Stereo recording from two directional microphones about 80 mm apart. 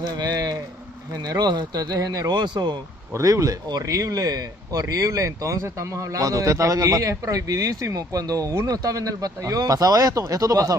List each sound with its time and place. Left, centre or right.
0.1 s a sound: right
1.2 s speech: right
3.1 s speech: right